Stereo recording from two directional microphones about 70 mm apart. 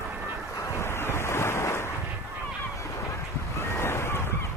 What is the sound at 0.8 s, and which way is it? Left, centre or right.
Waves, left.